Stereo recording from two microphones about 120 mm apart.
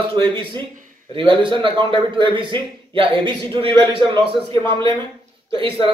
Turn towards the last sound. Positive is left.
turn(degrees=-45)  # may be behind; listen again after turning